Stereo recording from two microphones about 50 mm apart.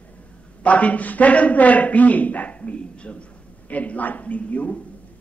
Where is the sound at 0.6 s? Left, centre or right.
Left.